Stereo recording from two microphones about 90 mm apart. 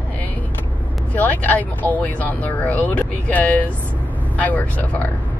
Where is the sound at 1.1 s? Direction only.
20° left (ahead or behind).